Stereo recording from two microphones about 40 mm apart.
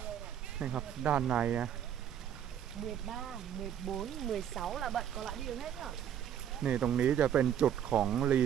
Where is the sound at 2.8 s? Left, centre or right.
Centre.